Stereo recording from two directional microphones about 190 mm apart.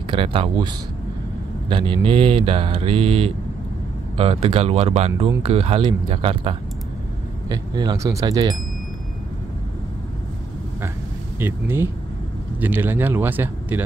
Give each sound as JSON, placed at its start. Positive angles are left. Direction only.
{"t": 0.1, "sound": "speech", "side_deg": -30}
{"t": 1.7, "sound": "speech", "side_deg": -25}
{"t": 11.3, "sound": "speech", "side_deg": -10}